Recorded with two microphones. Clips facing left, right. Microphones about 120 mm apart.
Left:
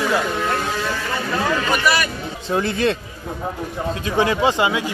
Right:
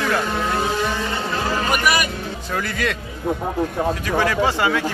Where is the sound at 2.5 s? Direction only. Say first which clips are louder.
Left 6 dB; 25° left (ahead or behind).